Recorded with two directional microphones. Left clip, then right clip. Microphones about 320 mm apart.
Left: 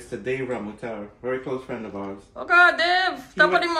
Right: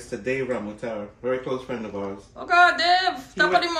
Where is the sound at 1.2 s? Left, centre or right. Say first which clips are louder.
Right 1 dB; centre.